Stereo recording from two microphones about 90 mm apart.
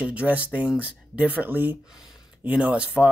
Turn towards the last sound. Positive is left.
turn(degrees=-15)  # may be behind; listen again after turning